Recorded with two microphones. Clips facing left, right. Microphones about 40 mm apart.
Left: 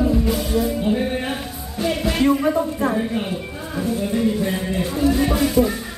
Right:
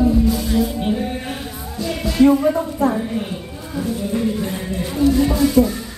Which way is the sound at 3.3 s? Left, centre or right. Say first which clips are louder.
Left 2 dB; centre.